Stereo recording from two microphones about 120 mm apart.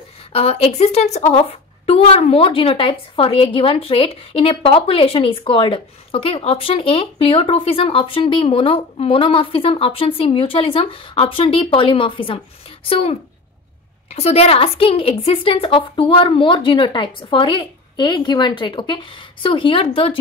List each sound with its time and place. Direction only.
0.3 s a woman's voice: 55° left (ahead or behind)